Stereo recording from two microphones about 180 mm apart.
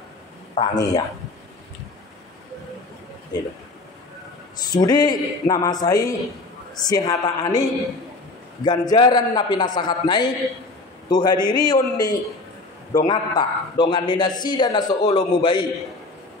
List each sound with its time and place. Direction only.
0.6 s a man's voice: 20° left (ahead or behind)
4.7 s a man's voice: 20° left (ahead or behind)
8.6 s a man's voice: 25° left (ahead or behind)